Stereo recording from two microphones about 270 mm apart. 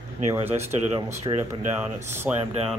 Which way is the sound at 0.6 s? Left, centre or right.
Right.